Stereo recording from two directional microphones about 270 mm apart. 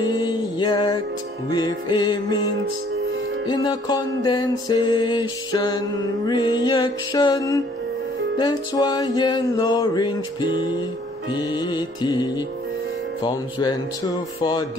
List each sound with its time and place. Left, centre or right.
0.0 s mantra: centre
1.5 s music: centre